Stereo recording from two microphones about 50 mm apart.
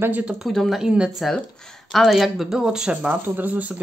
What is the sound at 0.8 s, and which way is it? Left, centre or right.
Speech, centre.